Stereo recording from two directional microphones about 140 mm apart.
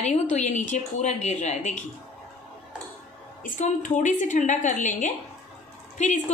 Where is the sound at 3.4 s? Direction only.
60° left (ahead or behind).